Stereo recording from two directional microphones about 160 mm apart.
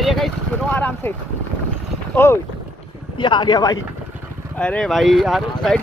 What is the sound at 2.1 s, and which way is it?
Speech, 15° left (ahead or behind).